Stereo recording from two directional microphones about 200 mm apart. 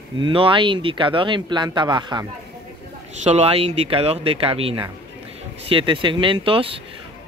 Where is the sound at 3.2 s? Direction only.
35° right (ahead or behind).